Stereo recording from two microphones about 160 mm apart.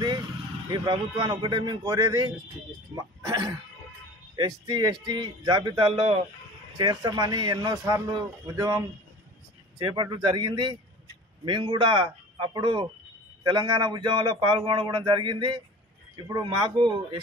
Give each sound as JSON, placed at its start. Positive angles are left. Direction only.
{"t": 0.7, "sound": "speech", "side_deg": -30}